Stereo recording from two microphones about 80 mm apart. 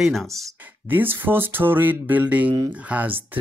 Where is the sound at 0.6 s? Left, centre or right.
Right.